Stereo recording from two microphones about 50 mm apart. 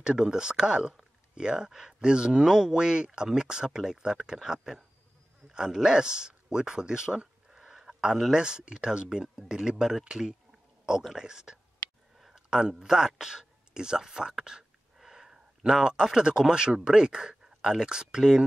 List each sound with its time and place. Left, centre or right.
0.0 s speech: centre